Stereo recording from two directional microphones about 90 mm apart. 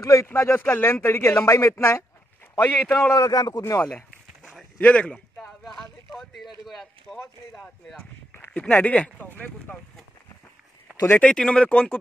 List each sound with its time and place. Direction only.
0.0 s speech: 35° left (ahead or behind)
0.3 s speech: 25° left (ahead or behind)
3.2 s speech: 45° left (ahead or behind)
3.7 s speech: 20° left (ahead or behind)
4.4 s a sound: 5° right (ahead or behind)
4.7 s a sound: 15° left (ahead or behind)
5.6 s speech: 5° left (ahead or behind)
11.1 s speech: 15° left (ahead or behind)